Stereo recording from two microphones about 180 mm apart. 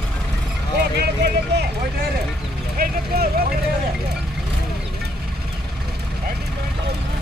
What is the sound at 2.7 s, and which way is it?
Clip-clop, 50° right (ahead or behind).